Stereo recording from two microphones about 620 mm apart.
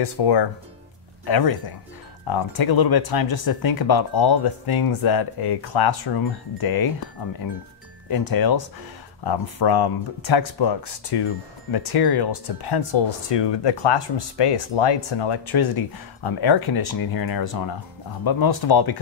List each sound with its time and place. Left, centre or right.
0.0 s speech: left
8.1 s speech: left